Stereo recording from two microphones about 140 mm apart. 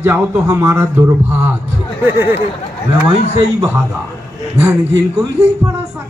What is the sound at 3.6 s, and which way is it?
A man's voice, 20° right (ahead or behind).